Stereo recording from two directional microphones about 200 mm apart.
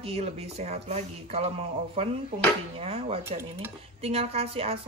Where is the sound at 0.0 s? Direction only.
30° right (ahead or behind).